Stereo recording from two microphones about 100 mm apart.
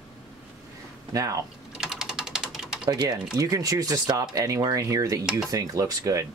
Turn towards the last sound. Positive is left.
turn(degrees=-35)  # may be behind; listen again after turning